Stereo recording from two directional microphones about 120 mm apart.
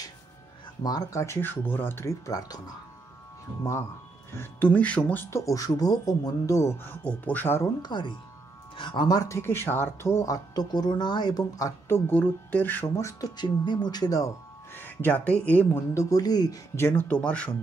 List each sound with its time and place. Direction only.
0.8 s speech: 30° left (ahead or behind)
4.3 s speech: 15° left (ahead or behind)
7.8 s speech: 40° left (ahead or behind)
12.1 s speech: 15° left (ahead or behind)
12.8 s speech: 25° left (ahead or behind)
14.7 s speech: 15° left (ahead or behind); by 16.5 s 30° left (ahead or behind)
16.7 s speech: 20° left (ahead or behind)